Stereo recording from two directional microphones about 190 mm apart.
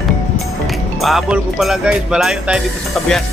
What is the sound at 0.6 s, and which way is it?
Speech, centre (ahead or behind).